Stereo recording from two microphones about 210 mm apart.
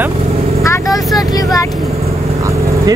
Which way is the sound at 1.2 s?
15° left (ahead or behind).